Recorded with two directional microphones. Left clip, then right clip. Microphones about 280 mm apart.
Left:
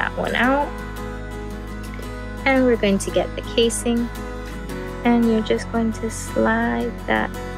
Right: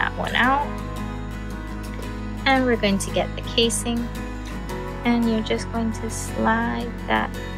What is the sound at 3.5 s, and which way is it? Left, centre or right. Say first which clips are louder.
Speech: left 2 dB; left.